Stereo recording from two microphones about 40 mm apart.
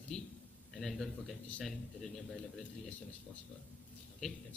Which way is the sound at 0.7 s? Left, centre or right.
Centre.